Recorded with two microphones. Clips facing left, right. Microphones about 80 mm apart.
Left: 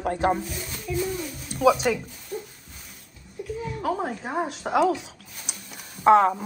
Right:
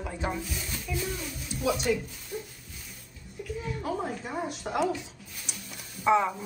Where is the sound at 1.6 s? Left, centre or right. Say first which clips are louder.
Left 10 dB; left.